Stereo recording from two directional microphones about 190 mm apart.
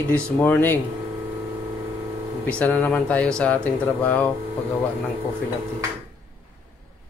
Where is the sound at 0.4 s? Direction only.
10° left (ahead or behind).